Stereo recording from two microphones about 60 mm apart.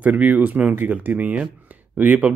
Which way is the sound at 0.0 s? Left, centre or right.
Right.